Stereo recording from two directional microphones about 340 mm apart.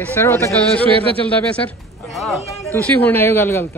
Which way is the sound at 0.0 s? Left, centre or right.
Centre.